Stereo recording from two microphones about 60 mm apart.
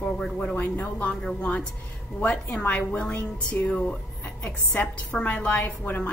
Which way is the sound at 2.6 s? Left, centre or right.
Left.